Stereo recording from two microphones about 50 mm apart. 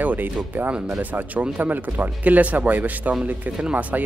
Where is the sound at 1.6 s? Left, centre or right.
Right.